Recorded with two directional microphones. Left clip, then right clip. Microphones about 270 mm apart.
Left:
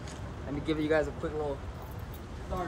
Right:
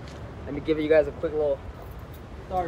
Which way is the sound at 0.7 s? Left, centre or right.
Centre.